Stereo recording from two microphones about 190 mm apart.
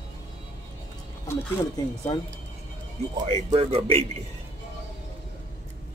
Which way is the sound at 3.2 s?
30° right (ahead or behind).